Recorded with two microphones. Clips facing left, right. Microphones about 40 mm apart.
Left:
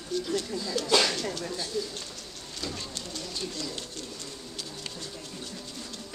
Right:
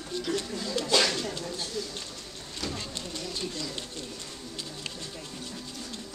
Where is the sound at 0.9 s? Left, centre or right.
Centre.